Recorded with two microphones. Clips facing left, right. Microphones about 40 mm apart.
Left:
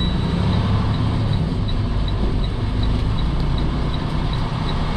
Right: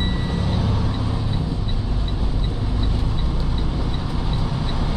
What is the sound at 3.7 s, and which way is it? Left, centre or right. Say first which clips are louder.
Vehicle: left 2 dB; left.